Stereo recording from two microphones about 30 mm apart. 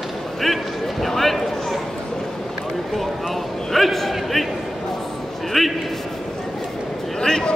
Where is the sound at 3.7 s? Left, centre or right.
Centre.